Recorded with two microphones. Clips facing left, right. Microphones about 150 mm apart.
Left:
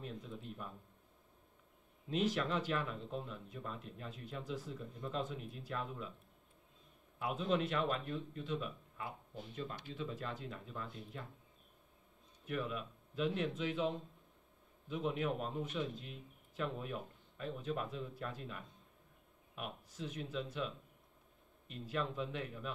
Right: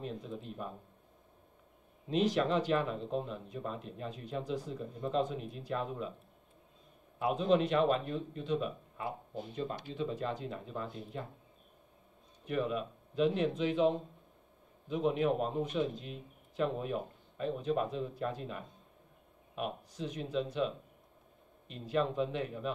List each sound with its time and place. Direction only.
0.0 s speech: 25° right (ahead or behind)
2.3 s speech: 25° right (ahead or behind)
7.2 s speech: 25° right (ahead or behind)
12.4 s speech: 25° right (ahead or behind)
20.2 s speech: 20° right (ahead or behind)
21.9 s speech: 25° right (ahead or behind)